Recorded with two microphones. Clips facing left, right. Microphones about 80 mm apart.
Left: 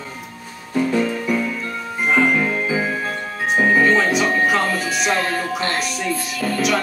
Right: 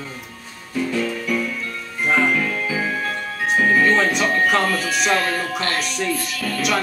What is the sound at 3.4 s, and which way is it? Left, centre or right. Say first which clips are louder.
Music: left 1 dB; centre.